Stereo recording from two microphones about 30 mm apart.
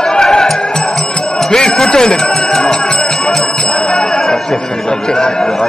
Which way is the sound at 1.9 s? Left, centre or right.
Left.